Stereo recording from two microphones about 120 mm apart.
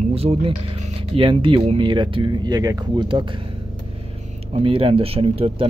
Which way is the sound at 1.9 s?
40° right (ahead or behind).